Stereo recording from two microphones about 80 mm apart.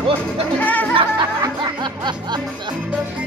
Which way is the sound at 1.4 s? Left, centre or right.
Right.